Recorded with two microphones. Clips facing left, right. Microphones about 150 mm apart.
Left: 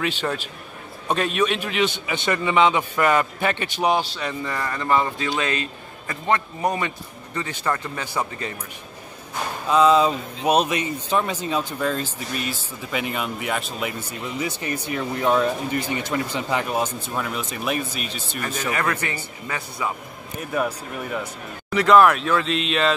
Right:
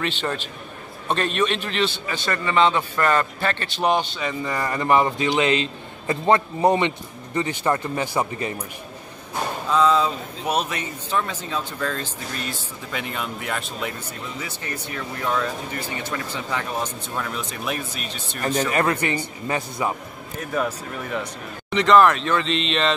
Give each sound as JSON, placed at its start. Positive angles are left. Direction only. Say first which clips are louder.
{"t": 0.0, "sound": "speech", "louder": "left 1 dB", "side_deg": 5}
{"t": 4.6, "sound": "a man's voice", "louder": "right 3 dB", "side_deg": -15}
{"t": 9.7, "sound": "speech", "louder": "left 3 dB", "side_deg": 15}
{"t": 15.0, "sound": "speech", "louder": "left 5 dB", "side_deg": 20}
{"t": 18.4, "sound": "speech", "louder": "right 4 dB", "side_deg": -30}
{"t": 20.3, "sound": "speech", "louder": "even", "side_deg": 10}